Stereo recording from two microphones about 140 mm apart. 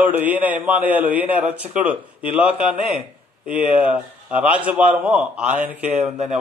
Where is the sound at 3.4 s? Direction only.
65° right (ahead or behind).